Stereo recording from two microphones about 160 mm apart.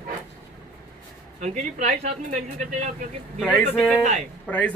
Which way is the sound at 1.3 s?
50° right (ahead or behind).